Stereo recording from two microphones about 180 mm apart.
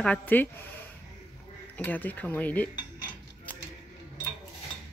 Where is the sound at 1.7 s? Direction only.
10° left (ahead or behind).